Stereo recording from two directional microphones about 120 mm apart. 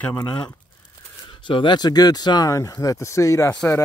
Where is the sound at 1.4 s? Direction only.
40° left (ahead or behind).